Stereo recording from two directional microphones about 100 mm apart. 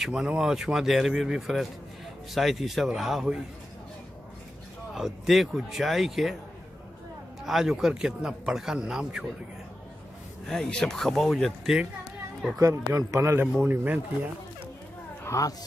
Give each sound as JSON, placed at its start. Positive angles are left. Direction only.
{"t": 0.0, "sound": "speech", "side_deg": -5}
{"t": 4.9, "sound": "speech", "side_deg": -5}
{"t": 7.4, "sound": "a man's voice", "side_deg": -5}
{"t": 10.4, "sound": "speech", "side_deg": 5}
{"t": 12.5, "sound": "a man's voice", "side_deg": -30}
{"t": 15.2, "sound": "speech", "side_deg": 30}